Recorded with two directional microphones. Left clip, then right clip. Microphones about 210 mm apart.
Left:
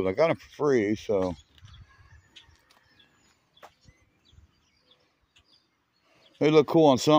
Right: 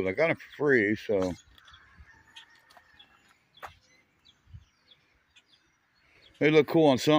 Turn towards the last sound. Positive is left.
turn(degrees=15)  # may be behind; listen again after turning